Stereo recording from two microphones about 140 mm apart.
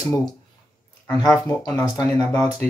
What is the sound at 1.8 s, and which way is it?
Speech, 25° left (ahead or behind).